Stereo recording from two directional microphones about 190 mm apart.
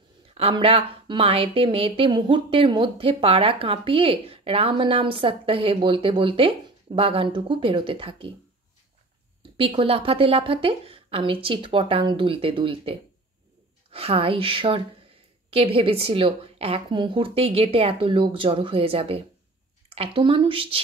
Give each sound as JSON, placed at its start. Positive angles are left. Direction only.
{"t": 0.3, "sound": "speech", "side_deg": -30}
{"t": 9.6, "sound": "speech", "side_deg": -30}